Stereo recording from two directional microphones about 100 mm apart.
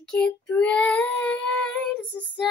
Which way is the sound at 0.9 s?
20° left (ahead or behind).